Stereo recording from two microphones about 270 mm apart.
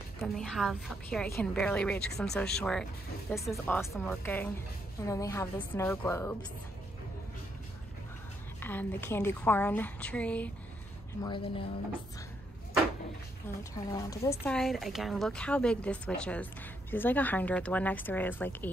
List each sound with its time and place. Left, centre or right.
0.2 s a woman's voice: centre
8.5 s a woman's voice: centre
11.2 s a woman's voice: centre
13.8 s a woman's voice: centre
14.4 s a woman's voice: centre